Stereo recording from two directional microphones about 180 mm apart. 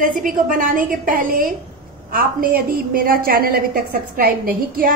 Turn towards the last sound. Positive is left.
turn(degrees=-55)  # may be behind; listen again after turning